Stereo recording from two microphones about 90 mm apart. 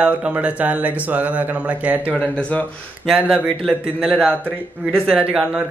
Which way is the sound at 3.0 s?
5° right (ahead or behind).